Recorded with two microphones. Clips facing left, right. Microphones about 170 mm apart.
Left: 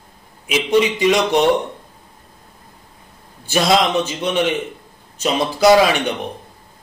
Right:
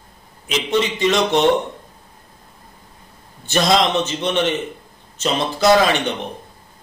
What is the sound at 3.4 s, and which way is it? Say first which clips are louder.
A man's voice: left 1 dB; 10° left (ahead or behind).